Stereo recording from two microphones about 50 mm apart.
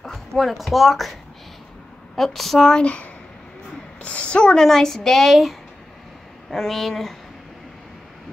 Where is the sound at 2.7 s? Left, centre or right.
Left; by 7.2 s centre.